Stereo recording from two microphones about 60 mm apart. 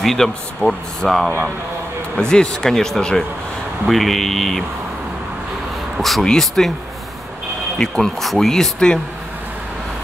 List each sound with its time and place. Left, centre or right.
0.0 s speech: centre
2.1 s speech: centre
5.9 s speech: centre
7.8 s speech: centre